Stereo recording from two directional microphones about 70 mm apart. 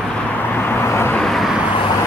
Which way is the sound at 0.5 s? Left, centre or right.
Left.